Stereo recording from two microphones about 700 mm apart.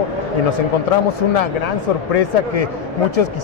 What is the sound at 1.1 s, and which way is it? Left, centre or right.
Speech, left.